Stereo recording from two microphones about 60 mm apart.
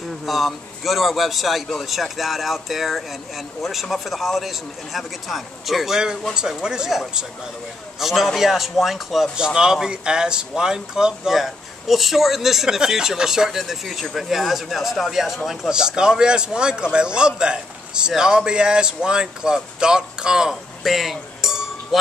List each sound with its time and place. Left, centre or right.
0.2 s a man's voice: centre
20.8 s cowbell: centre